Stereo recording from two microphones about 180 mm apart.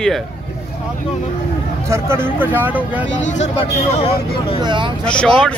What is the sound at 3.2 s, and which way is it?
Speech, 40° left (ahead or behind).